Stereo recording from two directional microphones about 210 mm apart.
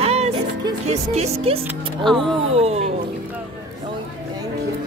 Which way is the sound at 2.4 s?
30° right (ahead or behind).